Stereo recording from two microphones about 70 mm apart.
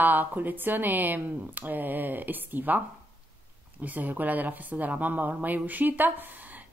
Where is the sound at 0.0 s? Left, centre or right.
Right.